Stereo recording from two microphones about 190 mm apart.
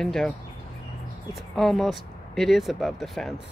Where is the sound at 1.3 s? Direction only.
Centre (ahead or behind).